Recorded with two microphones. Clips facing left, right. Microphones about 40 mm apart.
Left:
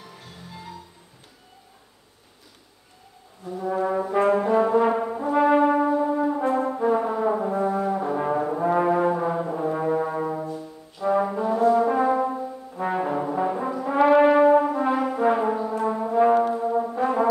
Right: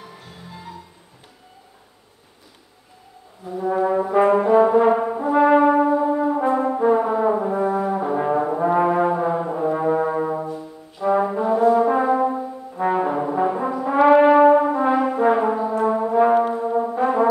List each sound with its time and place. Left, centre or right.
0.0 s music: centre
3.4 s brass instrument: centre